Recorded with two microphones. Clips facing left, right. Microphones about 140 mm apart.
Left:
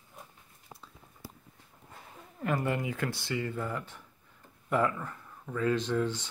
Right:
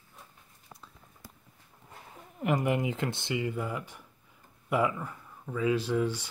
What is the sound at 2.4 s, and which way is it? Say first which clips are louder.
Speech: right 3 dB; 15° right (ahead or behind).